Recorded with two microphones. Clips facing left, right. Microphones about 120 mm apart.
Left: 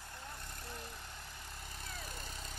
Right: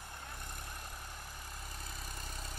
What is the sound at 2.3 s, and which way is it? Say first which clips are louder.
Vehicle: right 1 dB; 45° right (ahead or behind).